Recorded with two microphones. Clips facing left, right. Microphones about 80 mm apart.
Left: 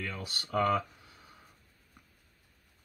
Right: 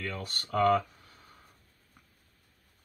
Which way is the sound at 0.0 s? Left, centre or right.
Centre.